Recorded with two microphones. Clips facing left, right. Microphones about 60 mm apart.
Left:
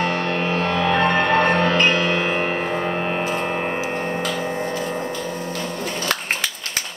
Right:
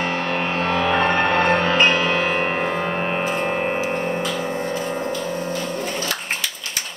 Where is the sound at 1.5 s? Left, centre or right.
Centre.